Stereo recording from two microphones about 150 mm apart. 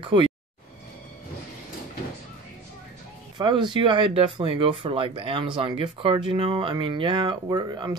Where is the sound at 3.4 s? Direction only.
30° right (ahead or behind).